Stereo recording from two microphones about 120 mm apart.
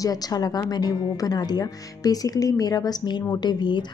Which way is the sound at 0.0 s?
30° left (ahead or behind).